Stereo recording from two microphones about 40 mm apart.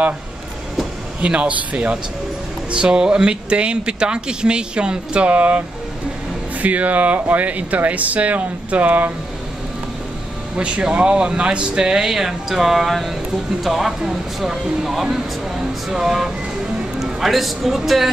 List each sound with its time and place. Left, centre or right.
1.2 s speech: right
2.7 s speech: right
6.6 s speech: right
10.5 s speech: right; by 18.1 s centre